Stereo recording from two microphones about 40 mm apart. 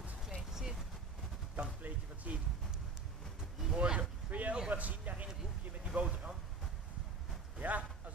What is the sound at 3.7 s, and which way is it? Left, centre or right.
Speech, right.